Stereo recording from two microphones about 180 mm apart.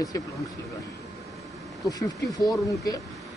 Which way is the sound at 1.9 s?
20° left (ahead or behind).